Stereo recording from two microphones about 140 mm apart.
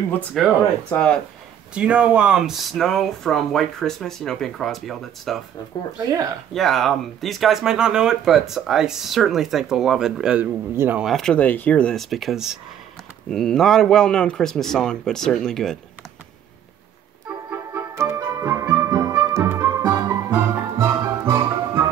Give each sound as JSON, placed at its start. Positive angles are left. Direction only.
{"t": 0.3, "sound": "speech", "side_deg": 5}
{"t": 1.7, "sound": "speech", "side_deg": -10}
{"t": 6.0, "sound": "speech", "side_deg": -25}
{"t": 6.5, "sound": "speech", "side_deg": 0}
{"t": 11.1, "sound": "speech", "side_deg": 5}
{"t": 17.5, "sound": "music", "side_deg": -20}
{"t": 20.1, "sound": "music", "side_deg": -15}